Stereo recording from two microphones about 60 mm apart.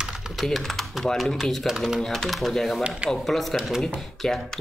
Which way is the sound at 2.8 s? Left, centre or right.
Centre.